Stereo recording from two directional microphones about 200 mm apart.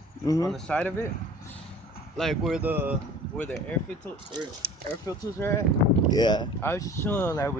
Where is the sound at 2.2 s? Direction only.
Centre (ahead or behind).